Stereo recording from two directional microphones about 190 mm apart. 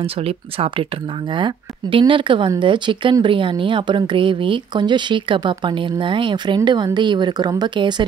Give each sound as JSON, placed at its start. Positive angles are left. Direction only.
{"t": 0.0, "sound": "speech", "side_deg": -30}